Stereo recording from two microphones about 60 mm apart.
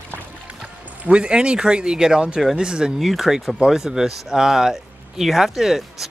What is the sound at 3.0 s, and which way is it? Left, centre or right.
Speech, centre.